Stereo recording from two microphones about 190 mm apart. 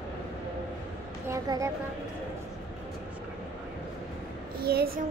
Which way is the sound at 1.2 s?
15° right (ahead or behind).